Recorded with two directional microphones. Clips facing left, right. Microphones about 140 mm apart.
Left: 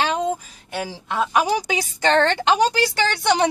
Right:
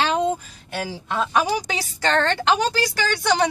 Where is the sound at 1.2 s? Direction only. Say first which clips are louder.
Left 2 dB; 15° left (ahead or behind).